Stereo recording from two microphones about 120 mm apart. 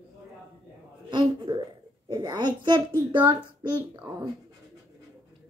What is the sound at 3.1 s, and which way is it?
Child singing, 40° right (ahead or behind).